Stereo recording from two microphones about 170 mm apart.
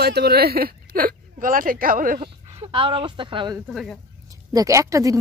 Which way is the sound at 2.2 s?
35° right (ahead or behind).